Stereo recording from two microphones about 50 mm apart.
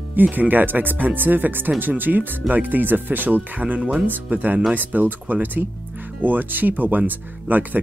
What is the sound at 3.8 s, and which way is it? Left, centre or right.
Speech, centre.